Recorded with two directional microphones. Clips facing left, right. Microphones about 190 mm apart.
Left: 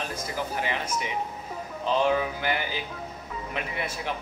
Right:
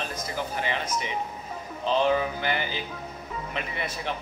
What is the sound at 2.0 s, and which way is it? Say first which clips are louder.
Speech: even; 10° left (ahead or behind).